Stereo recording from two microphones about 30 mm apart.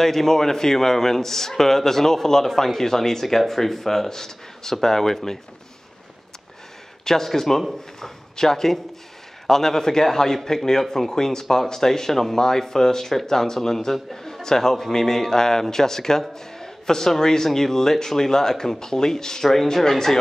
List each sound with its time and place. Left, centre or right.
0.0 s a man's voice: centre
7.1 s a man's voice: centre